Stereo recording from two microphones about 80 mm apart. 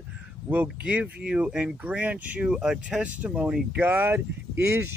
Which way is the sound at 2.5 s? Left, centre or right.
Centre.